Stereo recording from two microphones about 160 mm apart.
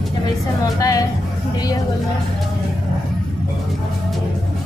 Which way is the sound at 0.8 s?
20° left (ahead or behind).